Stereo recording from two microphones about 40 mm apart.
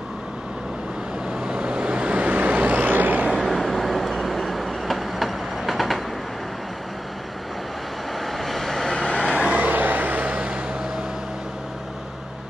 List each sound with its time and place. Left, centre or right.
1.4 s vehicle: right
3.3 s train: centre
8.3 s vehicle: centre
8.9 s vehicle: centre
9.2 s vehicle: right
9.5 s vehicle: right
10.3 s vehicle: right